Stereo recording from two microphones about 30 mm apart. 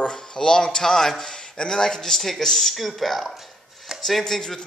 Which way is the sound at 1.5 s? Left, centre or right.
Left.